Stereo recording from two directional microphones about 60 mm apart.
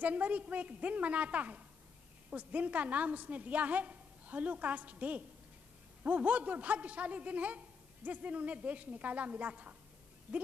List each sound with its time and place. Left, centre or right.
0.0 s a man's voice: right